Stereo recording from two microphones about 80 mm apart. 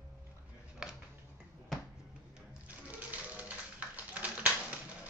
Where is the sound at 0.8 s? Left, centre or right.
Centre.